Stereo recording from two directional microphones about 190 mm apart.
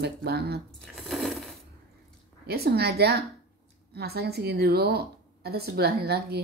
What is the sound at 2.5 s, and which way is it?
A woman's voice, 55° right (ahead or behind).